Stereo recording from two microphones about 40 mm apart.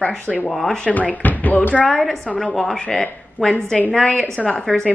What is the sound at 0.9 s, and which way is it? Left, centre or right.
Speech, left.